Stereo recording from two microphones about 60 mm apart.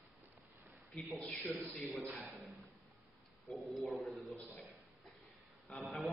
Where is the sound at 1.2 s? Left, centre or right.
Left.